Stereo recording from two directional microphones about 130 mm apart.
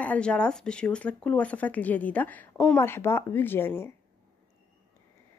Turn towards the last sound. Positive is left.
turn(degrees=15)  # may be behind; listen again after turning